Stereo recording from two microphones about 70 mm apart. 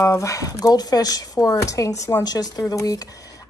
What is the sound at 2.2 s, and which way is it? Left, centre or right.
Speech, left.